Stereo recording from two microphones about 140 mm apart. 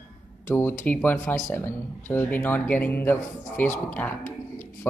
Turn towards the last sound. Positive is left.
turn(degrees=15)  # may be behind; listen again after turning